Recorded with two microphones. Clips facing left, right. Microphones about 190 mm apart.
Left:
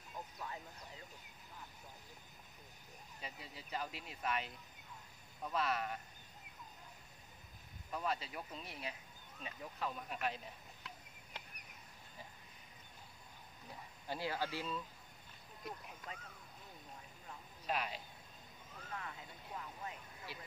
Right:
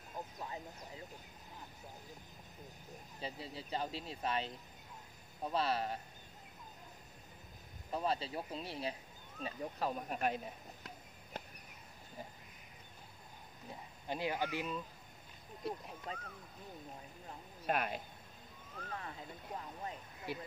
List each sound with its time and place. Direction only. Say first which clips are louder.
3.2 s speech: right 7 dB; 30° right (ahead or behind)
7.9 s speech: right 4 dB; 30° right (ahead or behind)
11.3 s a sound: right 7 dB; 45° right (ahead or behind)
13.7 s speech: right 3 dB; 20° right (ahead or behind)
15.6 s speech: right 7 dB; 30° right (ahead or behind)
17.6 s speech: right 4 dB; 55° right (ahead or behind)
18.9 s speech: right 2 dB; 35° right (ahead or behind)
20.3 s speech: right 10 dB; 55° right (ahead or behind)